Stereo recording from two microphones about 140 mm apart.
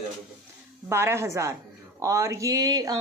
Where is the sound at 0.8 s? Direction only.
20° right (ahead or behind).